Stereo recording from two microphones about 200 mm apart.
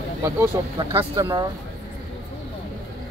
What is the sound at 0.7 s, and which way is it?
Speech, 25° right (ahead or behind).